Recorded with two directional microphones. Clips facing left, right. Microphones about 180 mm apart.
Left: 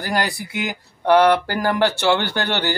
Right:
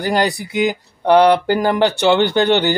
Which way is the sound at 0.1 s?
20° right (ahead or behind).